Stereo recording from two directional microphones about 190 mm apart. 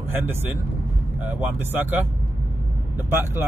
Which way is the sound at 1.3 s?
10° right (ahead or behind).